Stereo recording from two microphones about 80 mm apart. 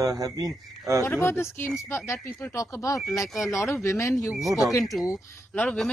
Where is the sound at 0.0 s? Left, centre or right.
Right.